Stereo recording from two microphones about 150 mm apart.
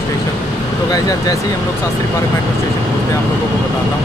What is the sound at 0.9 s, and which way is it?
Speech, 25° left (ahead or behind).